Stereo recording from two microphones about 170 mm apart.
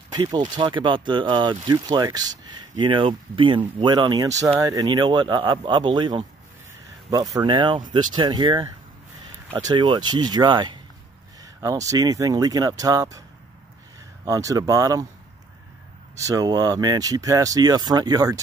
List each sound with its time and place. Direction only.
0.1 s speech: 25° right (ahead or behind)
14.2 s speech: 20° right (ahead or behind)
16.2 s speech: 20° right (ahead or behind)